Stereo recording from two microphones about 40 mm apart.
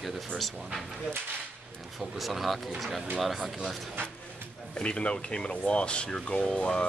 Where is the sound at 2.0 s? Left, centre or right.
Centre.